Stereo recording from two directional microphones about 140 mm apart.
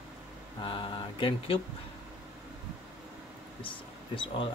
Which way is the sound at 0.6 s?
35° left (ahead or behind).